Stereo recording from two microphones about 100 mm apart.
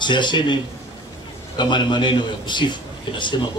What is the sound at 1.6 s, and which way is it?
A man's voice, 50° left (ahead or behind).